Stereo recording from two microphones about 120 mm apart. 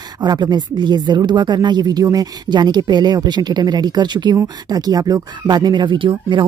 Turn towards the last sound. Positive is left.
turn(degrees=-40)  # may be behind; listen again after turning